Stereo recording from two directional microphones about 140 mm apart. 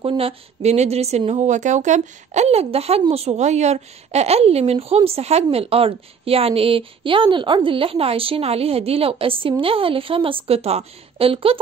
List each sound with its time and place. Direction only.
0.0 s a woman's voice: 40° right (ahead or behind)